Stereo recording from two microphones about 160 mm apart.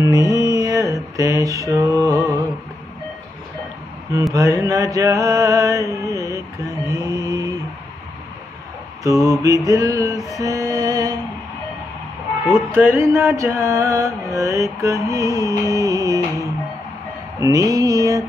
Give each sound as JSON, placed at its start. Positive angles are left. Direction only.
{"t": 0.0, "sound": "mantra", "side_deg": -20}
{"t": 4.3, "sound": "mantra", "side_deg": -20}
{"t": 9.0, "sound": "mantra", "side_deg": -20}
{"t": 10.3, "sound": "music", "side_deg": -20}
{"t": 12.7, "sound": "music", "side_deg": -15}
{"t": 14.3, "sound": "mantra", "side_deg": -20}
{"t": 17.4, "sound": "mantra", "side_deg": -20}